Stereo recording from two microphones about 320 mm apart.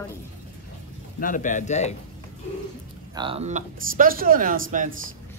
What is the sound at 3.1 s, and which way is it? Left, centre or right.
Speech, centre.